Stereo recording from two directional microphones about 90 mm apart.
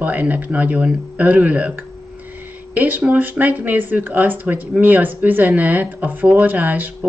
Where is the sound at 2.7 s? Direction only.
20° right (ahead or behind).